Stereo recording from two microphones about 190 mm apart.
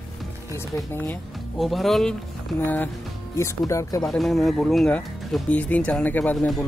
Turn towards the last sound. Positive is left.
turn(degrees=0)  # may be behind; listen again after turning